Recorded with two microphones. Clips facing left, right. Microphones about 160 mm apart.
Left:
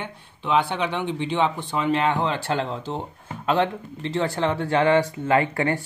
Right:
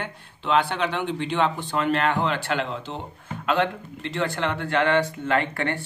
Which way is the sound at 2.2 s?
35° left (ahead or behind).